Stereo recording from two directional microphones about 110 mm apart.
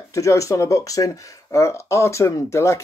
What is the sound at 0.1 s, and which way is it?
Speech, 30° left (ahead or behind).